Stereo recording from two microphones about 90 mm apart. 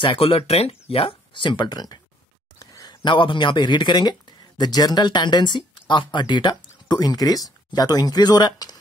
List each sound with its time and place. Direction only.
0.0 s speech: 80° left; by 8.7 s 45° left (ahead or behind)